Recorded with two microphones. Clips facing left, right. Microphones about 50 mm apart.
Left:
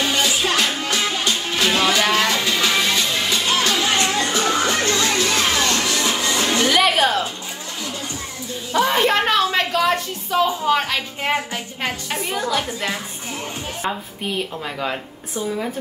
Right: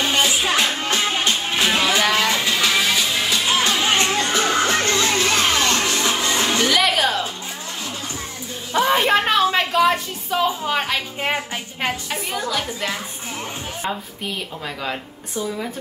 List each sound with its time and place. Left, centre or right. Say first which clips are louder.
0.0 s music: right 1 dB; right
0.3 s music: even; centre
0.7 s music: even; right
1.6 s music: left 1 dB; centre
2.5 s music: even; centre
3.8 s music: even; right
6.7 s music: left 4 dB; centre
8.7 s a sound: even; centre
10.3 s a woman's voice: left 2 dB; centre
12.1 s a woman's voice: left 2 dB; centre